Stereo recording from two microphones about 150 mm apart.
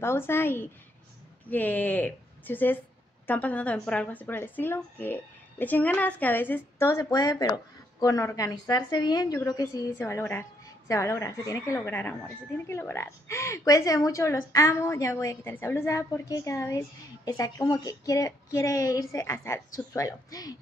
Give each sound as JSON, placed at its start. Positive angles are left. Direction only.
{"t": 0.0, "sound": "speech", "side_deg": 15}
{"t": 6.9, "sound": "a woman's voice", "side_deg": 25}